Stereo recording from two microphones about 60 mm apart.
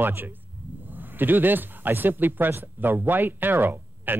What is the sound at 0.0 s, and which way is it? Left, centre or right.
Speech, right.